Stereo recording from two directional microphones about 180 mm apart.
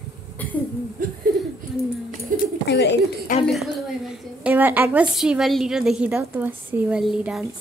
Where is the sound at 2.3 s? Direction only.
50° right (ahead or behind).